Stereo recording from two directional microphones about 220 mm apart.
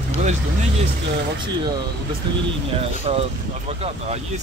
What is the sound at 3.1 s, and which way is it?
Speech, 25° right (ahead or behind).